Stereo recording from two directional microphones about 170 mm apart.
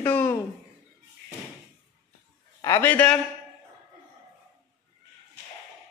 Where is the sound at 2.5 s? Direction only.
15° left (ahead or behind).